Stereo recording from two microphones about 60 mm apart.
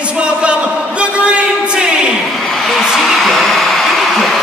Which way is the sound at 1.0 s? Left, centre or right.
Centre.